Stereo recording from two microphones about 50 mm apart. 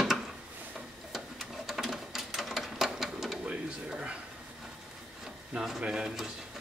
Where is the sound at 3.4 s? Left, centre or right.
Right.